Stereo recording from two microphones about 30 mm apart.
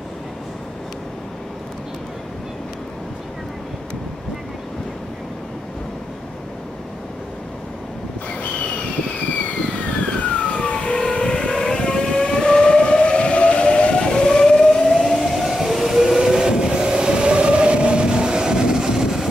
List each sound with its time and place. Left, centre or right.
9.3 s vehicle: left
10.4 s vehicle: left
11.1 s train: left
11.7 s vehicle: left
14.9 s train: centre